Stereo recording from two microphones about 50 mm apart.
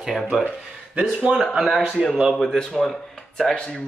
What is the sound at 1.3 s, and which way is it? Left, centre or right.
Speech, right.